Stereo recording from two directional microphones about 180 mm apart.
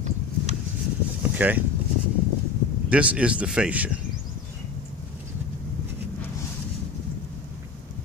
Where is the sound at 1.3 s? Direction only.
10° right (ahead or behind).